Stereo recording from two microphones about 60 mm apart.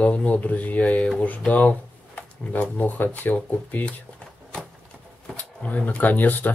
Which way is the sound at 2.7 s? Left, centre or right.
Left.